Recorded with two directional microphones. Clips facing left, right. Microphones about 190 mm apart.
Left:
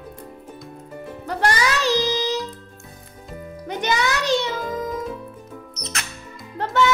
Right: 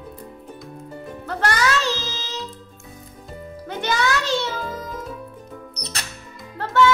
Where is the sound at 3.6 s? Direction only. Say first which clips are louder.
Even; 15° left (ahead or behind).